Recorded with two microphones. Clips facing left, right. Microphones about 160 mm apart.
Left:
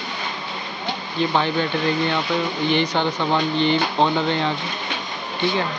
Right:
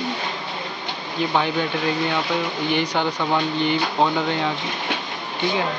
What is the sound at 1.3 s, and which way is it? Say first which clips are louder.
Speech: even; 10° right (ahead or behind).